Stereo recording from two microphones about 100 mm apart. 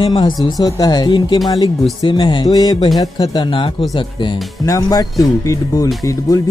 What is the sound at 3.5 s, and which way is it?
Speech, 60° left (ahead or behind).